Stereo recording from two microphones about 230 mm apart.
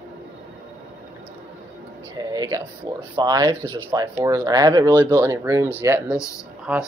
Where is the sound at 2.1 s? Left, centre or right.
Centre.